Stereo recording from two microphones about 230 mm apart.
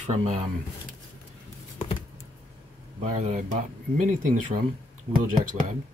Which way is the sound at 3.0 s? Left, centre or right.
Right.